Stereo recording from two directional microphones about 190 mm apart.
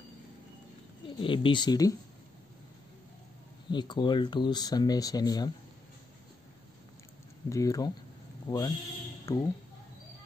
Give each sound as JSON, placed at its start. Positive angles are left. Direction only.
{"t": 1.0, "sound": "speech", "side_deg": 25}
{"t": 3.7, "sound": "speech", "side_deg": 25}
{"t": 7.4, "sound": "speech", "side_deg": 15}